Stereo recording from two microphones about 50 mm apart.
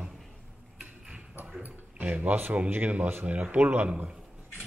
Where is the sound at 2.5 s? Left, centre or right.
Right.